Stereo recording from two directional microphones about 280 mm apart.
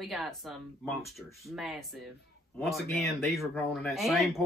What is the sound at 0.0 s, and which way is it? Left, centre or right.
Speech, centre.